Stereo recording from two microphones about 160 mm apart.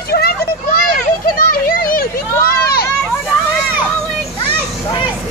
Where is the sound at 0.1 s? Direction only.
75° left (ahead or behind).